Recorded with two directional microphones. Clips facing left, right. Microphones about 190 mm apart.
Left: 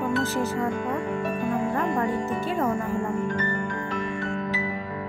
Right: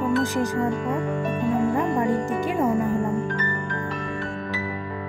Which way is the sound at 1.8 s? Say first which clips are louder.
Right 3 dB; 15° right (ahead or behind).